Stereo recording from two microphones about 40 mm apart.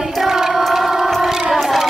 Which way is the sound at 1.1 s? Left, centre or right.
Centre.